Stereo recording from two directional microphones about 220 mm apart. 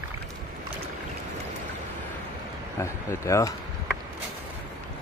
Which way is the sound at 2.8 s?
15° left (ahead or behind).